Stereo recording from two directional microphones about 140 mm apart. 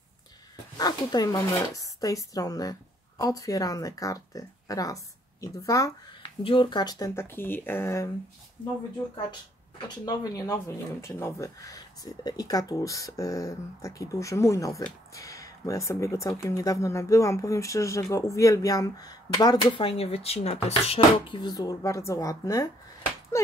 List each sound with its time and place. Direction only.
0.7 s a woman's voice: 30° left (ahead or behind)
6.2 s speech: 35° left (ahead or behind)
7.2 s speech: 15° left (ahead or behind)
10.0 s speech: 25° left (ahead or behind)
19.8 s speech: 45° left (ahead or behind)
21.4 s speech: 30° left (ahead or behind)